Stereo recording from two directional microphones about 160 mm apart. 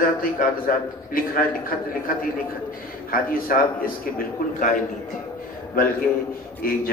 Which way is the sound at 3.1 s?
60° left (ahead or behind).